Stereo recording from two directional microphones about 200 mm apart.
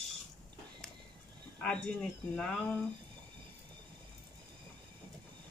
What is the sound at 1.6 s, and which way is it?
Speech, 5° left (ahead or behind).